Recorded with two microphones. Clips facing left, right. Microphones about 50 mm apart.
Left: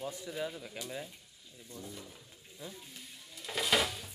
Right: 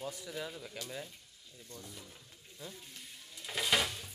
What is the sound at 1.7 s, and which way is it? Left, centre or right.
Stir, centre.